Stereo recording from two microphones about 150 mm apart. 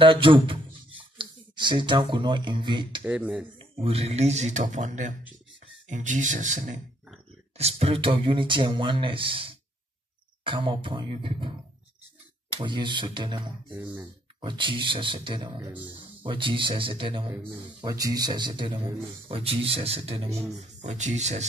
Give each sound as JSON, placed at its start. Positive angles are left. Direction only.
{"t": 0.0, "sound": "speech", "side_deg": -35}
{"t": 3.0, "sound": "speech", "side_deg": -10}
{"t": 3.8, "sound": "speech", "side_deg": -40}
{"t": 7.5, "sound": "speech", "side_deg": -40}
{"t": 12.5, "sound": "speech", "side_deg": -30}
{"t": 13.7, "sound": "speech", "side_deg": -10}
{"t": 14.4, "sound": "speech", "side_deg": -30}
{"t": 17.3, "sound": "speech", "side_deg": -15}
{"t": 17.8, "sound": "speech", "side_deg": -25}